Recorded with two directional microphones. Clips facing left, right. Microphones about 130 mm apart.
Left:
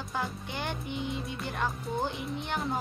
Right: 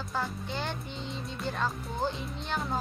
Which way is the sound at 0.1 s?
15° left (ahead or behind).